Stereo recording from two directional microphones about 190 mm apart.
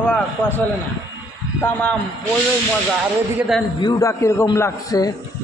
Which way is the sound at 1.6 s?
10° left (ahead or behind).